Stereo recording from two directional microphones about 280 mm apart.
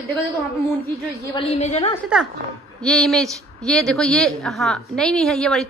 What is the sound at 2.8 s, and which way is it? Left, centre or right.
A woman's voice, centre.